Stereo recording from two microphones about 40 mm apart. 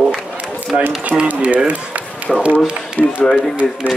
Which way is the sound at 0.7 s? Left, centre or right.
Right.